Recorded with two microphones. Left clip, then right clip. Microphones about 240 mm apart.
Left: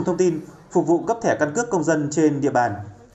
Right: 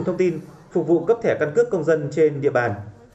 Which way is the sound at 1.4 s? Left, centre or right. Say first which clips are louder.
Right 2 dB; left.